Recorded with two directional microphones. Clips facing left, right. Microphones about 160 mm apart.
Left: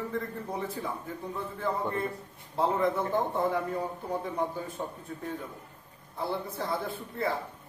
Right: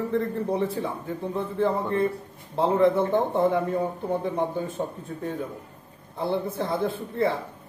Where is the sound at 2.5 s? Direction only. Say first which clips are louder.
Right 7 dB; 25° right (ahead or behind).